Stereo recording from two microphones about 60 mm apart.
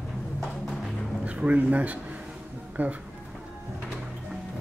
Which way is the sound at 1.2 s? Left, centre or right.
Right.